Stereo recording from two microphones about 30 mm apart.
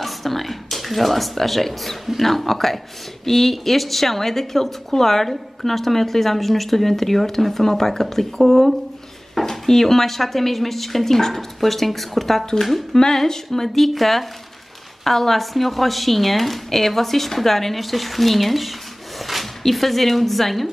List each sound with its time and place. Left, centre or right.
0.0 s a woman's voice: centre
12.9 s speech: centre
13.7 s a woman's voice: centre